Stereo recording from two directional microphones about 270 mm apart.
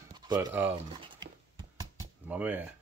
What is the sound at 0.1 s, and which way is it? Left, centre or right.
Speech, centre.